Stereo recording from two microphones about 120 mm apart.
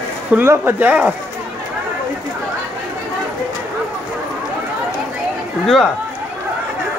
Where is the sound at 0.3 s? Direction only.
20° right (ahead or behind).